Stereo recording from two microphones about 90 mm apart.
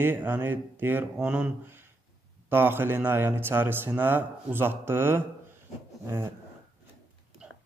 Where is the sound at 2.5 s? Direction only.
25° right (ahead or behind).